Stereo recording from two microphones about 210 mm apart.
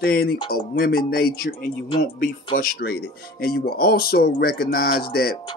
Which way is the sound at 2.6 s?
45° left (ahead or behind).